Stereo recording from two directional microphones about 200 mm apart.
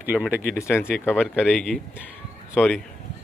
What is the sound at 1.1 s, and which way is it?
Speech, centre (ahead or behind).